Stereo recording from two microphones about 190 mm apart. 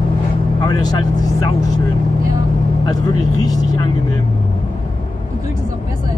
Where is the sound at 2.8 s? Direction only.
20° left (ahead or behind).